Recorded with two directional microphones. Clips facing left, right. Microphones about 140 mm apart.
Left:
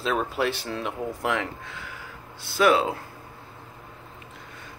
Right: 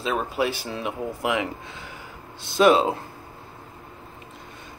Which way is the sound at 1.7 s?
20° right (ahead or behind).